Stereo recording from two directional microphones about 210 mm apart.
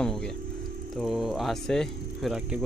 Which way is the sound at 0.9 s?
Centre (ahead or behind).